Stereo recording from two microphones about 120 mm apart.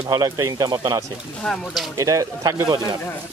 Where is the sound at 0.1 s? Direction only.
30° right (ahead or behind).